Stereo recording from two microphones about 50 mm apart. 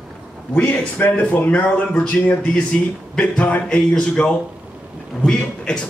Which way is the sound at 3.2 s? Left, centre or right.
Left.